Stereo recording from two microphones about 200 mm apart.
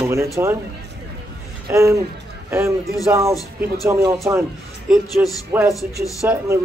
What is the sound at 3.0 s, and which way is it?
Speech, 15° right (ahead or behind).